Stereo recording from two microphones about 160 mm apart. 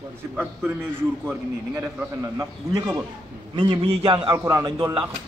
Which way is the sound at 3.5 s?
30° right (ahead or behind).